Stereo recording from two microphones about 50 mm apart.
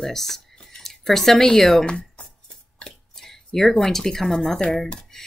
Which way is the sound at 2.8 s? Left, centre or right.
Centre.